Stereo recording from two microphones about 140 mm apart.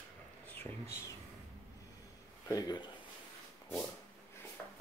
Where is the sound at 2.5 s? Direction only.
25° left (ahead or behind).